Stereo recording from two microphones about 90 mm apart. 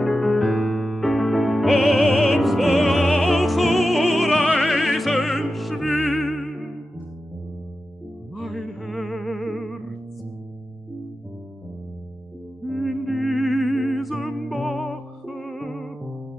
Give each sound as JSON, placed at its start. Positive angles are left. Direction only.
{"t": 0.0, "sound": "music", "side_deg": 15}
{"t": 0.4, "sound": "music", "side_deg": -5}
{"t": 1.4, "sound": "music", "side_deg": -15}
{"t": 1.7, "sound": "music", "side_deg": 0}
{"t": 5.9, "sound": "music", "side_deg": 20}
{"t": 8.9, "sound": "music", "side_deg": 15}
{"t": 9.4, "sound": "music", "side_deg": 0}
{"t": 12.6, "sound": "music", "side_deg": 0}